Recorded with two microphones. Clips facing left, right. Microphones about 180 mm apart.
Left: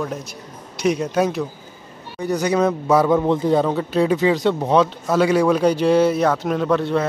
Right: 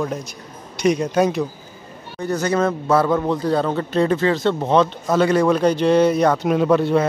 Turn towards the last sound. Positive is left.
turn(degrees=-5)  # may be behind; listen again after turning